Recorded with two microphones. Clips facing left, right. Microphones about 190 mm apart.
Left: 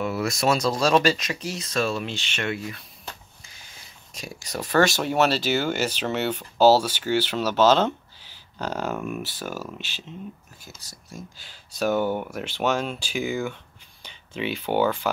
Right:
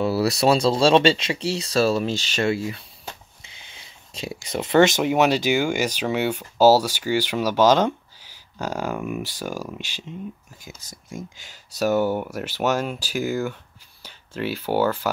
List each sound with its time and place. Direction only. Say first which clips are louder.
0.0 s speech: right 5 dB; 35° right (ahead or behind)
4.5 s speech: right 4 dB; 20° right (ahead or behind)
11.8 s speech: right 3 dB; 10° right (ahead or behind)